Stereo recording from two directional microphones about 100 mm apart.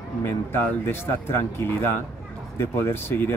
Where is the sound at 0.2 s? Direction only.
20° left (ahead or behind).